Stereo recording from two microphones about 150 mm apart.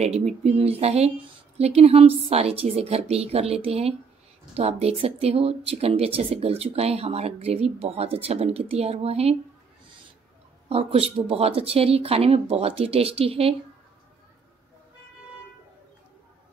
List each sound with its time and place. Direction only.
0.0 s speech: 45° right (ahead or behind)
10.7 s speech: 40° right (ahead or behind)